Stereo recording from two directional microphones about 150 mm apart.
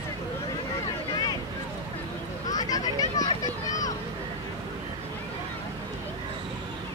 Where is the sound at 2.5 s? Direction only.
25° left (ahead or behind).